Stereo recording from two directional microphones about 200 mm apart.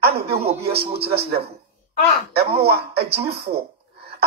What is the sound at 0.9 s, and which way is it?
Speech, 55° right (ahead or behind).